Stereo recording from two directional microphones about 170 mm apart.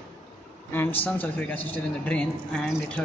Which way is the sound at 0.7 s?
10° left (ahead or behind).